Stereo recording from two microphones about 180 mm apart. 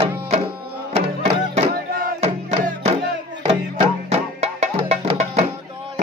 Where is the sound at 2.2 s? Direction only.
35° right (ahead or behind).